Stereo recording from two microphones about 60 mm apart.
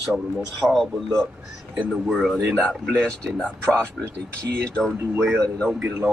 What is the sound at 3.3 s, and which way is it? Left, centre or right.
Speech, centre.